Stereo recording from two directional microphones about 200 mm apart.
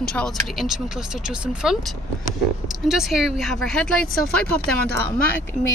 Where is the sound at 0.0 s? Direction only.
5° left (ahead or behind).